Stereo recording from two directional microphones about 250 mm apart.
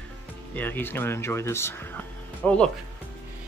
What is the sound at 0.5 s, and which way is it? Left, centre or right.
Speech, centre.